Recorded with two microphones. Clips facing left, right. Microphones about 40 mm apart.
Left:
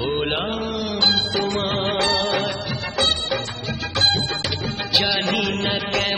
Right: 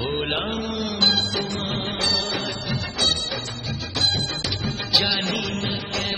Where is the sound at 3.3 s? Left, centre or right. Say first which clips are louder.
Left 5 dB; left.